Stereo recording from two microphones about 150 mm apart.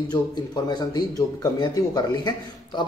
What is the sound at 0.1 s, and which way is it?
A man's voice, 25° left (ahead or behind).